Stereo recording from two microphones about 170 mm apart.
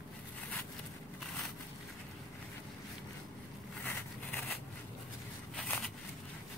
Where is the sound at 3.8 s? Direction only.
10° left (ahead or behind).